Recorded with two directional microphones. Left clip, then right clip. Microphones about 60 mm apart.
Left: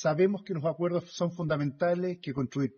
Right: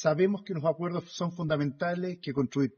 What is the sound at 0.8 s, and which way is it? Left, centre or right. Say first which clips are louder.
A man's voice: left 4 dB; left.